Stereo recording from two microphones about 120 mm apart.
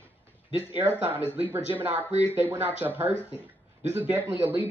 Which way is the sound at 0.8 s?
20° right (ahead or behind).